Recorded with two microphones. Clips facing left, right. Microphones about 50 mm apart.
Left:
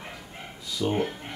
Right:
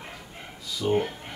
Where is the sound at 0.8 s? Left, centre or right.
Centre.